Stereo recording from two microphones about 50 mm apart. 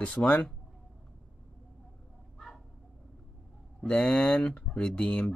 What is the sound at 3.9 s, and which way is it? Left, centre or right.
Speech, left.